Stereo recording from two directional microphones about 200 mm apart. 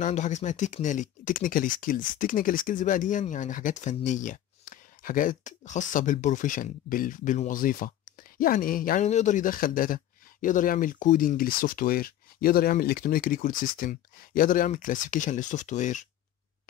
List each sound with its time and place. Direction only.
0.0 s speech: 35° left (ahead or behind)